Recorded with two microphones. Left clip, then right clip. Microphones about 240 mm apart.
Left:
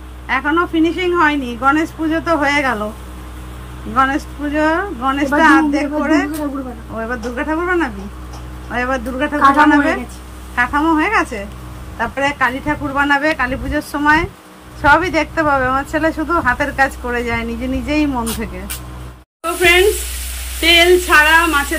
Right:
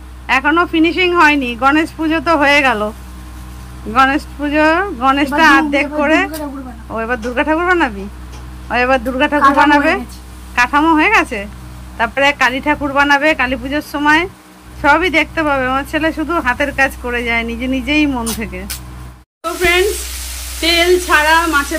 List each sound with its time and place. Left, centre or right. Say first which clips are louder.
0.3 s speech: right 3 dB; centre
3.9 s speech: right 3 dB; centre
20.6 s a sound: left 2 dB; centre